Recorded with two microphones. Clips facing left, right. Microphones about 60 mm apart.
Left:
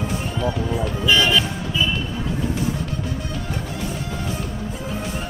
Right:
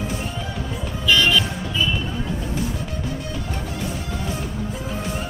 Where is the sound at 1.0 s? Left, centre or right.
Left.